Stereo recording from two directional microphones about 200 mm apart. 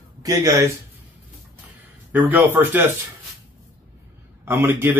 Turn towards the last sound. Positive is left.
turn(degrees=-10)  # may be behind; listen again after turning